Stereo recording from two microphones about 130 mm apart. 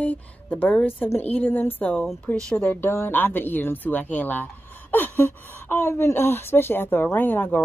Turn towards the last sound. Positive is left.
turn(degrees=15)  # may be behind; listen again after turning